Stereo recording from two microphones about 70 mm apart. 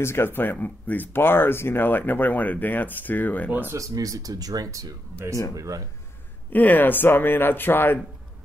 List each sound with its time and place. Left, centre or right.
0.0 s speech: left
3.7 s speech: right
6.5 s speech: left